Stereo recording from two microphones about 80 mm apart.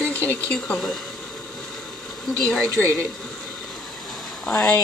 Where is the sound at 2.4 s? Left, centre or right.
Centre.